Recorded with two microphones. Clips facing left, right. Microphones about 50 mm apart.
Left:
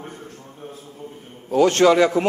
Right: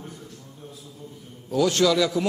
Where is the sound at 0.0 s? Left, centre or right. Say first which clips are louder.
Left 4 dB; left.